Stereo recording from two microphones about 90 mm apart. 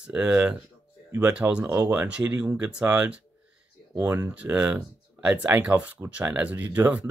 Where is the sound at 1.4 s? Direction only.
30° right (ahead or behind).